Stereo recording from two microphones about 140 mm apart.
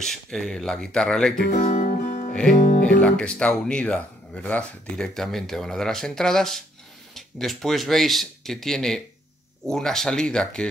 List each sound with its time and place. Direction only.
0.0 s speech: 5° left (ahead or behind)
1.6 s guitar: 75° left (ahead or behind)
2.6 s speech: 65° left (ahead or behind)
3.0 s speech: 5° left (ahead or behind)